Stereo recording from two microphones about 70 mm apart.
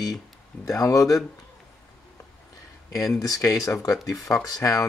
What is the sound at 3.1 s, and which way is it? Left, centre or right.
Speech, left.